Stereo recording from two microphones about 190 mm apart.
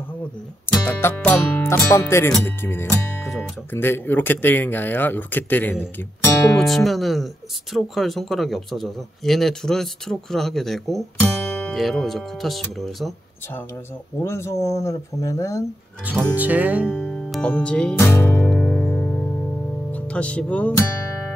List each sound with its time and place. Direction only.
0.7 s music: 10° left (ahead or behind)
1.9 s speech: 15° left (ahead or behind)
16.3 s music: 10° right (ahead or behind)
16.9 s music: 5° left (ahead or behind)
19.9 s speech: 5° left (ahead or behind)